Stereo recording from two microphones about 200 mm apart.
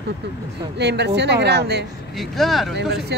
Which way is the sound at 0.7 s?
60° right (ahead or behind).